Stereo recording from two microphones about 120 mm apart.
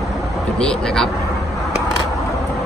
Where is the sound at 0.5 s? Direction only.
5° left (ahead or behind).